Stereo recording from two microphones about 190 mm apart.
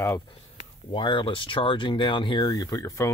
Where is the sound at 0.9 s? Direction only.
25° left (ahead or behind).